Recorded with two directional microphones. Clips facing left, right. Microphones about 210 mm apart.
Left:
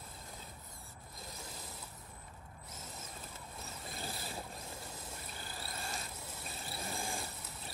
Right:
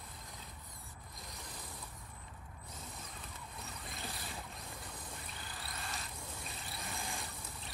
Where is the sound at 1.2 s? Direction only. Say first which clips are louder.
Left 2 dB; centre (ahead or behind).